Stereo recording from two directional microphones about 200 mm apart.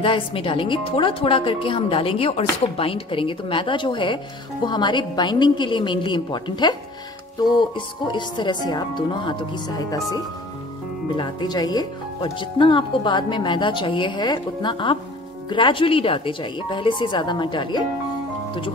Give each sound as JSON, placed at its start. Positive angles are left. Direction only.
{"t": 0.0, "sound": "speech", "side_deg": 25}